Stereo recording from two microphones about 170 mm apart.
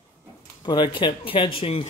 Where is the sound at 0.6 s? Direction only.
25° left (ahead or behind).